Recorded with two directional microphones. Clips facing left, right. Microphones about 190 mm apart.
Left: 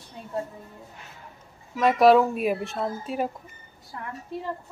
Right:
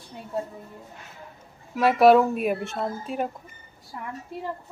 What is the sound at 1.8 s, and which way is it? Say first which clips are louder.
Speech: right 1 dB; 5° right (ahead or behind).